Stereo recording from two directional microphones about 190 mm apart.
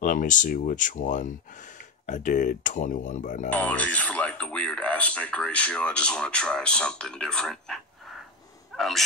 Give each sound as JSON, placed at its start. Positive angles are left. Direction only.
{"t": 0.0, "sound": "speech", "side_deg": 45}
{"t": 3.4, "sound": "speech", "side_deg": 10}